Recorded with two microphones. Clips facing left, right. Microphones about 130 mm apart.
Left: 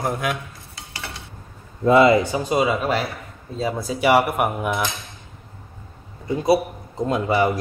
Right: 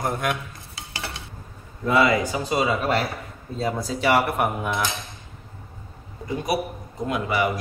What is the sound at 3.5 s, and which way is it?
Cutlery, 10° left (ahead or behind).